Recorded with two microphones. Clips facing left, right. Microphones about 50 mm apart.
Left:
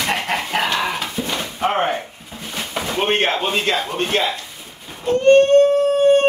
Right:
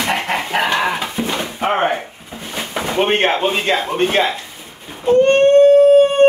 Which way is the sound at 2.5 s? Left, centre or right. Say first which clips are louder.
Right 2 dB; centre.